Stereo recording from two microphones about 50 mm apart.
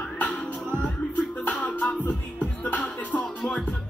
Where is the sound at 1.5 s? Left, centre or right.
Left.